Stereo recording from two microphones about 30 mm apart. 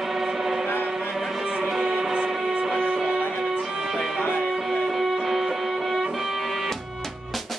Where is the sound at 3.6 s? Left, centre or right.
Centre.